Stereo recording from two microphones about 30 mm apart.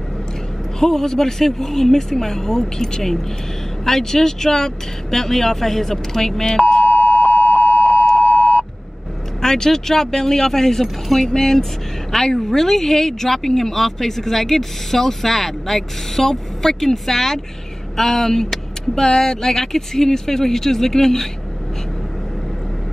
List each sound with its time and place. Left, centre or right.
0.7 s speech: centre
6.9 s beep: left
9.4 s speech: centre